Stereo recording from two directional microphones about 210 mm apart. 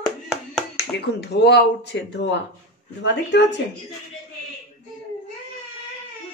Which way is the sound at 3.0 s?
55° left (ahead or behind).